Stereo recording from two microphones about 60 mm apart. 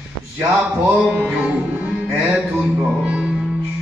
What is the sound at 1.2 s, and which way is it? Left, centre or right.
Music, centre.